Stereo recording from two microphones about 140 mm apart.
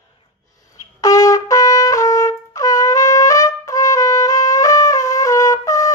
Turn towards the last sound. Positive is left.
turn(degrees=25)  # may be behind; listen again after turning